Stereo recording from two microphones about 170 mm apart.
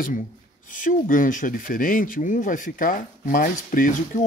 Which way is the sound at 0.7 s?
50° left (ahead or behind).